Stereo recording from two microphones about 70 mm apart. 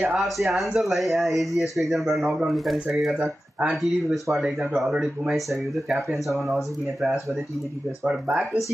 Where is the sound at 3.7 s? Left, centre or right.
Centre.